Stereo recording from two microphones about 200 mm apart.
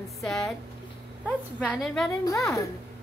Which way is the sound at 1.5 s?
5° left (ahead or behind).